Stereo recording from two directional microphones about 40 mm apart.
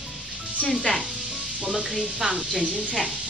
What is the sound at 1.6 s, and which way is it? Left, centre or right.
Speech, centre.